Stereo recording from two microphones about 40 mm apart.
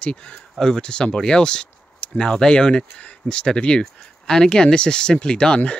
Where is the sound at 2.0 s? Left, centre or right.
Left.